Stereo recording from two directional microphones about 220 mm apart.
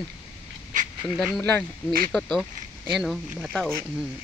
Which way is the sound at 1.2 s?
Centre (ahead or behind).